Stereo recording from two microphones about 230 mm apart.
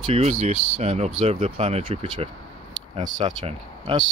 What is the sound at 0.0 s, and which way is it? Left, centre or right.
Speech, right.